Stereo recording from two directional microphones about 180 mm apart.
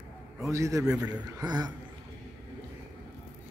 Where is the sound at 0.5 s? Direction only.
15° right (ahead or behind).